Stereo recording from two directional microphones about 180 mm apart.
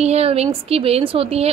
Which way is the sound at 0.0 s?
35° right (ahead or behind).